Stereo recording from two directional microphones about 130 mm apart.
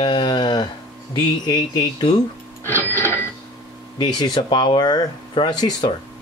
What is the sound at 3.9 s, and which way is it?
Speech, 35° left (ahead or behind).